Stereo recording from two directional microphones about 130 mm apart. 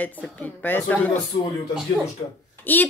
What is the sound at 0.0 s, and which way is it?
Speech, 10° left (ahead or behind).